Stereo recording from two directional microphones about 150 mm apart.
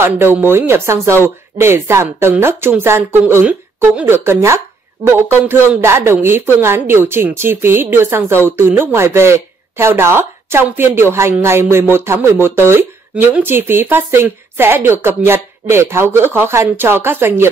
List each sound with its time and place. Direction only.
0.0 s a woman's voice: 15° right (ahead or behind)